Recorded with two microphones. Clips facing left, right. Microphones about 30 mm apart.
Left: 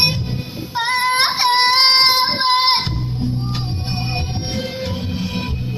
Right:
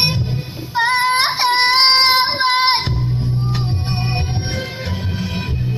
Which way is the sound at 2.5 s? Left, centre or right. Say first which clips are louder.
Left 1 dB; centre.